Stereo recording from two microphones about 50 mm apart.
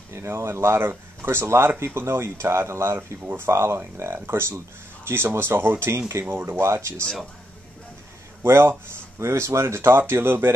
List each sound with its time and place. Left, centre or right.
0.1 s speech: right
8.4 s speech: right
9.2 s speech: right